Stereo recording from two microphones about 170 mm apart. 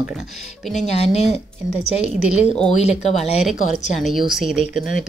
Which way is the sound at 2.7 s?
40° left (ahead or behind).